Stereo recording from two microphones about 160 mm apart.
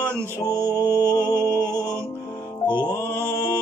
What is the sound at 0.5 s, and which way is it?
Music, 15° right (ahead or behind).